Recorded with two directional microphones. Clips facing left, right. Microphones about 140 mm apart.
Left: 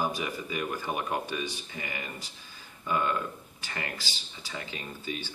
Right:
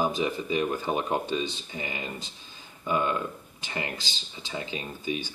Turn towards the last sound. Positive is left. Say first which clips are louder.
# right 5 dB
turn(degrees=-15)  # may be behind; listen again after turning